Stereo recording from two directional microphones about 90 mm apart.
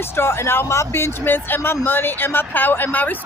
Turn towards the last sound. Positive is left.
turn(degrees=20)  # may be behind; listen again after turning